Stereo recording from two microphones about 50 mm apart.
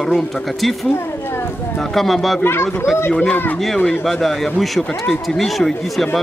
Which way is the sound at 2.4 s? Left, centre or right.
Left.